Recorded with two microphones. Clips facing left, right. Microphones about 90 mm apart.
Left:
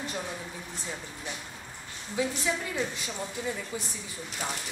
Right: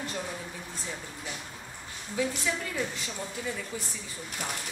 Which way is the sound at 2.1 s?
20° left (ahead or behind).